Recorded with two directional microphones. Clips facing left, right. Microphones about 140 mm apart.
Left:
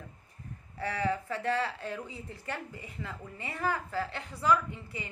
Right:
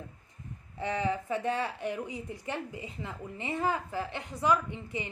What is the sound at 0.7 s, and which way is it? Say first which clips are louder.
A woman's voice: right 1 dB; 20° right (ahead or behind).